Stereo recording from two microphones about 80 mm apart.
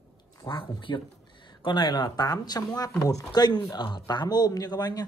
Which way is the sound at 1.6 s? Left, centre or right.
Left.